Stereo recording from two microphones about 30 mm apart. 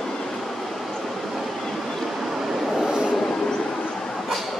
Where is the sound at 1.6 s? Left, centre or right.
Centre.